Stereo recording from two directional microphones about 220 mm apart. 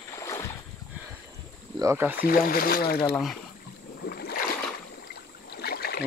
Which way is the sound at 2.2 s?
40° left (ahead or behind).